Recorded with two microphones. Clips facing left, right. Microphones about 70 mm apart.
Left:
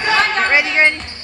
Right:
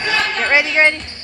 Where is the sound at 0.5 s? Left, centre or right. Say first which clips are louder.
Right 3 dB; left.